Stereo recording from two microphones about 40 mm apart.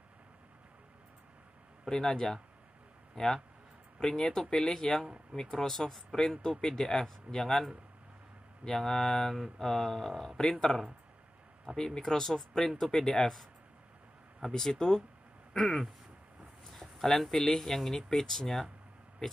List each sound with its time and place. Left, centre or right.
1.9 s speech: centre
4.0 s speech: centre
8.6 s speech: centre
14.5 s speech: centre